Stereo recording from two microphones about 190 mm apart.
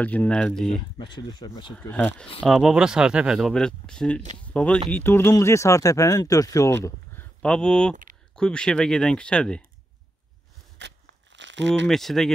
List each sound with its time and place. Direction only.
0.0 s speech: 10° left (ahead or behind)
0.9 s speech: 25° left (ahead or behind)
1.8 s speech: 10° left (ahead or behind)
7.9 s a sound: 45° right (ahead or behind)
8.4 s speech: 5° left (ahead or behind)
10.8 s crackle: 65° right (ahead or behind)
11.3 s crumpling: 70° right (ahead or behind)
11.9 s speech: centre (ahead or behind)